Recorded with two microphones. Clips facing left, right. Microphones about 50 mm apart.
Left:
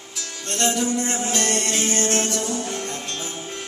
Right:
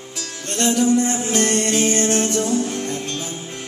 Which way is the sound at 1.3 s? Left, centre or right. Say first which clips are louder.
Right 6 dB; right.